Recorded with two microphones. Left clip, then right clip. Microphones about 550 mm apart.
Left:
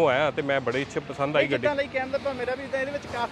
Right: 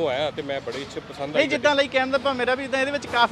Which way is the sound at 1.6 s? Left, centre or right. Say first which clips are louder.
Right 6 dB; right.